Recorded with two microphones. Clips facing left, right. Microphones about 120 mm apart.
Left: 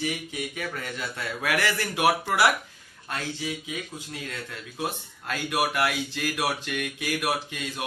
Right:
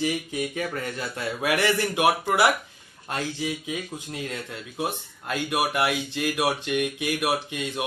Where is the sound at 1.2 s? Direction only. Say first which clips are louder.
Right 3 dB; 20° right (ahead or behind).